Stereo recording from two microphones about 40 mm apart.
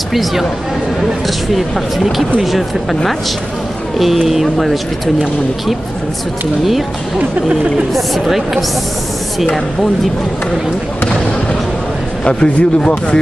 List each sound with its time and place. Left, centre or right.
0.1 s a woman's voice: centre
2.4 s a woman's voice: centre
4.0 s a woman's voice: centre
7.9 s a woman's voice: centre
12.3 s speech: left